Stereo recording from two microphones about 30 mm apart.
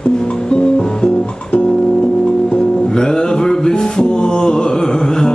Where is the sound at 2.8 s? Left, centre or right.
Left.